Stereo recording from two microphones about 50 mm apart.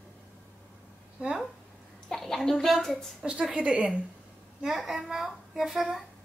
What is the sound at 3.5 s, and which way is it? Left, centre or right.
Speech, right.